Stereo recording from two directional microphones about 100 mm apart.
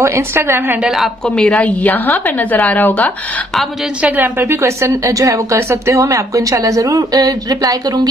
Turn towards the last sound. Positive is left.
turn(degrees=-40)  # may be behind; listen again after turning